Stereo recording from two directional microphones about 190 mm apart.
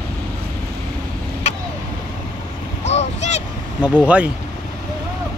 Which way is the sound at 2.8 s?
35° left (ahead or behind).